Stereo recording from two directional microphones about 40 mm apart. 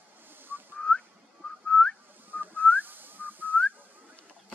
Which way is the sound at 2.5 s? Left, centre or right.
Left.